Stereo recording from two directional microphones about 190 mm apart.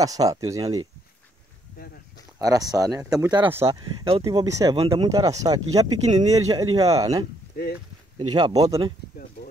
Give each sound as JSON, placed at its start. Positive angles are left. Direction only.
{"t": 0.0, "sound": "speech", "side_deg": -20}
{"t": 2.3, "sound": "speech", "side_deg": -20}
{"t": 4.2, "sound": "speech", "side_deg": -20}
{"t": 6.1, "sound": "speech", "side_deg": -30}
{"t": 6.4, "sound": "speech", "side_deg": -20}
{"t": 7.5, "sound": "speech", "side_deg": 55}
{"t": 8.3, "sound": "speech", "side_deg": -25}